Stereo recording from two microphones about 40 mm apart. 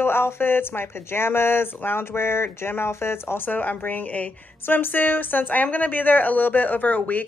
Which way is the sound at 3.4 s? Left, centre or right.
Left.